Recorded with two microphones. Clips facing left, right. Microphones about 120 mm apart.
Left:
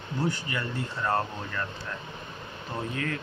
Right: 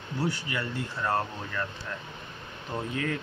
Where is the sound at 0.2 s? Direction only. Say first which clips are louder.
Left 1 dB; 10° right (ahead or behind).